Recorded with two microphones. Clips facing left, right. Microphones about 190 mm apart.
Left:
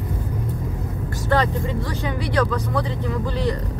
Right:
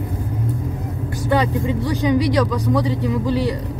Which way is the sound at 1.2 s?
15° right (ahead or behind).